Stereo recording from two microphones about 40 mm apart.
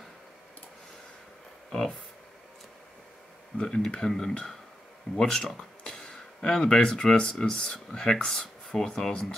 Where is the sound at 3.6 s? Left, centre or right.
Centre.